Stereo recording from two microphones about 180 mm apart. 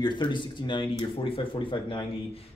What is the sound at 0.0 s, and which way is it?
Speech, 25° left (ahead or behind).